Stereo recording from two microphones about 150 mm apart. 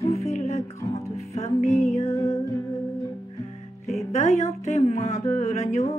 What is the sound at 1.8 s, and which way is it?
Music, 45° left (ahead or behind).